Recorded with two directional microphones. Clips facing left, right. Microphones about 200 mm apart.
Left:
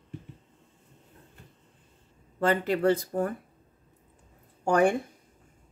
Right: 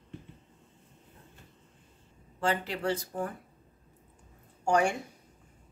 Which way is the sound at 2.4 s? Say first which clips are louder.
Left 6 dB; 55° left (ahead or behind).